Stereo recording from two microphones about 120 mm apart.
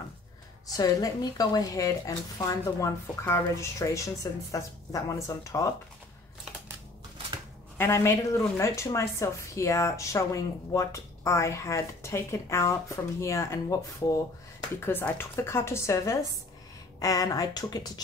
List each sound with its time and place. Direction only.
0.7 s a woman's voice: 30° left (ahead or behind)
7.7 s a woman's voice: 20° left (ahead or behind)